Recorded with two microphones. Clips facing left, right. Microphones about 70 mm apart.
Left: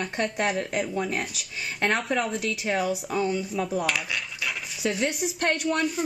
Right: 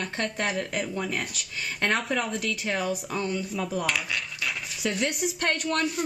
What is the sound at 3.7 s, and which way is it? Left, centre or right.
Coin, centre.